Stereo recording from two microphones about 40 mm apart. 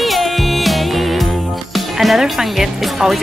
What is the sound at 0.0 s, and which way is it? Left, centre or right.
Music, centre.